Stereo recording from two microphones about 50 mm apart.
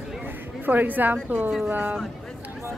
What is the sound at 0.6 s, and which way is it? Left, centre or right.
A woman's voice, right.